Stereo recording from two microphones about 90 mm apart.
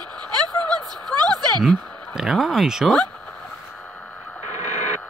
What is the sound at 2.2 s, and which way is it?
Speech, 5° right (ahead or behind).